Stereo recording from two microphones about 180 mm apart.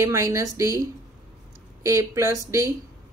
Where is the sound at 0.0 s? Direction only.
15° right (ahead or behind).